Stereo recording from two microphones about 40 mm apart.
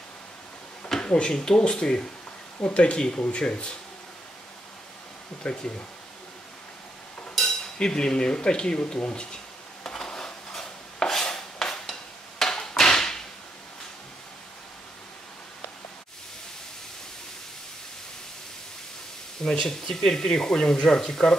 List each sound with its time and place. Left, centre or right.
1.0 s speech: left
5.4 s speech: left
7.3 s dishes: centre
9.8 s a sound: centre
11.9 s hammer: centre
19.4 s speech: centre